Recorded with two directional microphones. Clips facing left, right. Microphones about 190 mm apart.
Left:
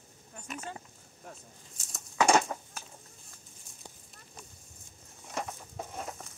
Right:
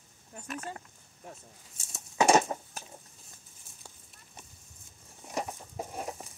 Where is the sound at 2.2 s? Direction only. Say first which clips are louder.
Right 2 dB; 20° right (ahead or behind).